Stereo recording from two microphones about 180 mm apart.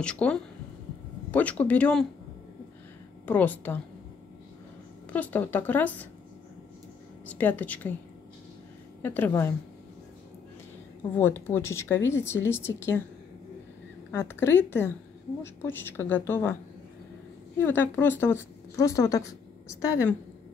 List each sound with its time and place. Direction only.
0.0 s a woman's voice: 5° left (ahead or behind)
3.3 s a woman's voice: 10° left (ahead or behind)
5.1 s a woman's voice: 10° left (ahead or behind)
7.2 s a woman's voice: 10° left (ahead or behind)
9.0 s a woman's voice: 10° left (ahead or behind)
11.1 s a woman's voice: 15° left (ahead or behind)
14.1 s a woman's voice: 15° left (ahead or behind)
17.6 s a woman's voice: 10° left (ahead or behind)